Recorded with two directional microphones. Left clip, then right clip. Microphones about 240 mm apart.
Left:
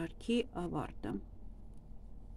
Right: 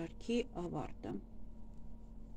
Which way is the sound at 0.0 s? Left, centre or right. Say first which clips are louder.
Left 3 dB; left.